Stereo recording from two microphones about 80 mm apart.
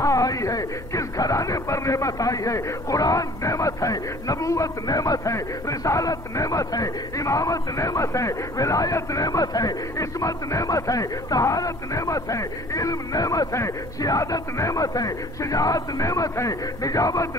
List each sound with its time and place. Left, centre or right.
0.0 s a man's voice: left